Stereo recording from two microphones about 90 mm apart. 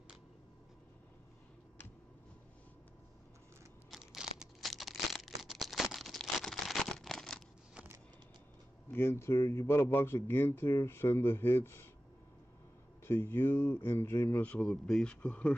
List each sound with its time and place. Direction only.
3.9 s a sound: 5° right (ahead or behind)
8.9 s a man's voice: 25° left (ahead or behind)
13.0 s a man's voice: 25° left (ahead or behind)
14.4 s speech: 10° left (ahead or behind)